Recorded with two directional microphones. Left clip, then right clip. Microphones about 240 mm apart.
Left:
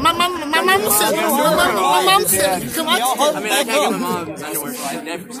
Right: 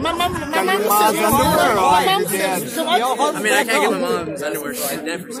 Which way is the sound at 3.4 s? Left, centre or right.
Centre.